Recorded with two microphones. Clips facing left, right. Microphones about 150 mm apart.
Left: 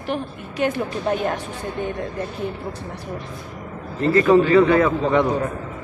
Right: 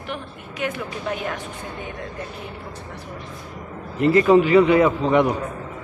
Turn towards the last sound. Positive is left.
turn(degrees=-15)  # may be behind; listen again after turning